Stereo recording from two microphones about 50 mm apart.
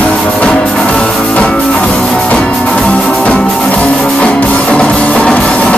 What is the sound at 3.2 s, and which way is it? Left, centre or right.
Music, left.